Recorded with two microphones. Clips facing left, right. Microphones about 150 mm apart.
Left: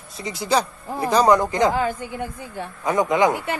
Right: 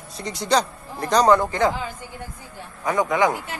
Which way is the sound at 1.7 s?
55° left (ahead or behind).